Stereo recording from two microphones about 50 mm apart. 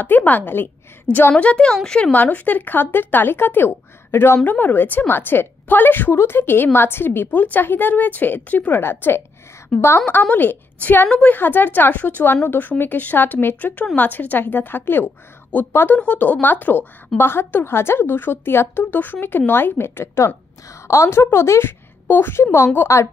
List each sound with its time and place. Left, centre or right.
0.0 s a woman's voice: left
1.1 s a woman's voice: right
1.4 s a woman's voice: left
1.7 s speech: centre
2.1 s a woman's voice: left
4.5 s a woman's voice: left
6.1 s a woman's voice: left
8.8 s a woman's voice: left
10.3 s a woman's voice: left
16.2 s a woman's voice: left
18.9 s a woman's voice: left
20.8 s a woman's voice: left
22.0 s a woman's voice: left
22.9 s speech: left